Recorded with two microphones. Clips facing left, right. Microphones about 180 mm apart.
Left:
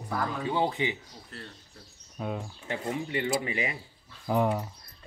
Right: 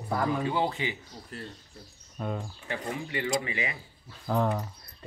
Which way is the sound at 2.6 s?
25° left (ahead or behind).